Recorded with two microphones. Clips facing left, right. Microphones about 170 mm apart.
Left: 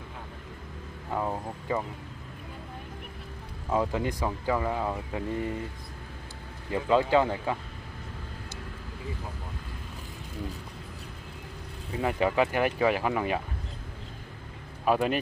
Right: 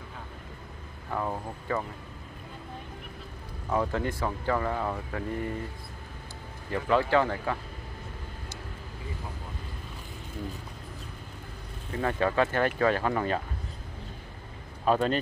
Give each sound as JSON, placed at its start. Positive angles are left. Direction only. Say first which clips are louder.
{"t": 1.1, "sound": "speech", "louder": "left 1 dB", "side_deg": 15}
{"t": 3.7, "sound": "speech", "louder": "left 1 dB", "side_deg": 15}
{"t": 6.7, "sound": "speech", "louder": "left 1 dB", "side_deg": 15}
{"t": 11.9, "sound": "speech", "louder": "left 1 dB", "side_deg": 15}
{"t": 14.9, "sound": "speech", "louder": "even", "side_deg": 10}